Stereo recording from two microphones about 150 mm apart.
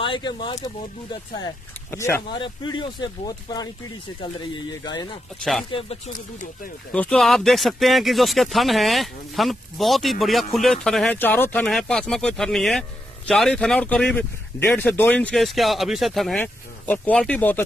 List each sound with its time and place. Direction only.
0.0 s speech: 30° left (ahead or behind)
1.9 s speech: 20° left (ahead or behind)
2.3 s speech: 30° left (ahead or behind)
5.4 s speech: centre (ahead or behind)
5.7 s speech: 40° left (ahead or behind)
6.9 s speech: 5° left (ahead or behind)